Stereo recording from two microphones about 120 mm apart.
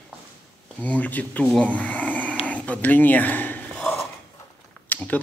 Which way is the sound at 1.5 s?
10° left (ahead or behind).